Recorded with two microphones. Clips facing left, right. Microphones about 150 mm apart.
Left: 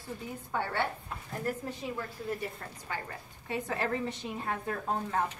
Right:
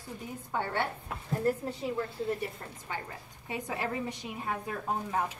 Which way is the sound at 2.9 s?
20° right (ahead or behind).